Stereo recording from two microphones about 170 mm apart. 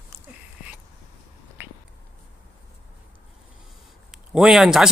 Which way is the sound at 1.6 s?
10° right (ahead or behind).